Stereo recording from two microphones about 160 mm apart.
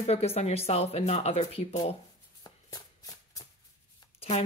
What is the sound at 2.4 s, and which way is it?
Shuffling cards, 20° left (ahead or behind).